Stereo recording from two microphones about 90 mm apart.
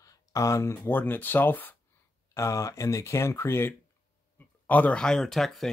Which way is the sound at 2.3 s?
35° left (ahead or behind).